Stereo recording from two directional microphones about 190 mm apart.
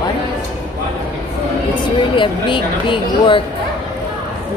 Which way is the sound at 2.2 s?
25° left (ahead or behind).